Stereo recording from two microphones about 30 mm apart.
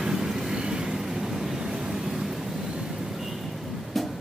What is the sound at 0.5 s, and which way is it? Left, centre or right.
Vehicle, right.